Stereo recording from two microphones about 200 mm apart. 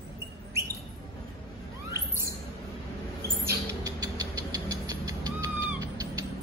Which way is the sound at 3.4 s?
15° right (ahead or behind).